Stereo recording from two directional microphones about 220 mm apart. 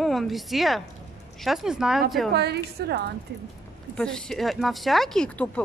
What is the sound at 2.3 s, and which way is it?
Speech, 45° right (ahead or behind).